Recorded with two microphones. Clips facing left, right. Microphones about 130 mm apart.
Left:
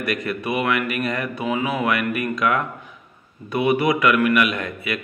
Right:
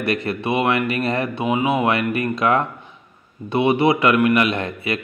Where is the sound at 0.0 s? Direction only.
30° right (ahead or behind).